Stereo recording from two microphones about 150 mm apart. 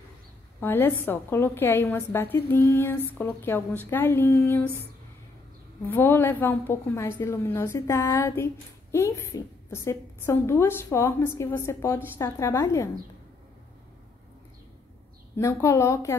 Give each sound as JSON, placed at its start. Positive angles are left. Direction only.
{"t": 0.6, "sound": "a woman's voice", "side_deg": 15}
{"t": 5.9, "sound": "a woman's voice", "side_deg": 15}
{"t": 15.3, "sound": "a woman's voice", "side_deg": 20}